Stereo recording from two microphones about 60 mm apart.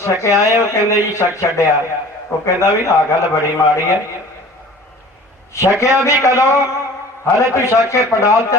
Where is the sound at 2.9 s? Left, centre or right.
Left.